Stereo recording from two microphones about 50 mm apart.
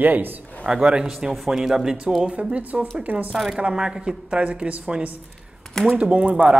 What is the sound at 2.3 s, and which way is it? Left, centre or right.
Speech, right.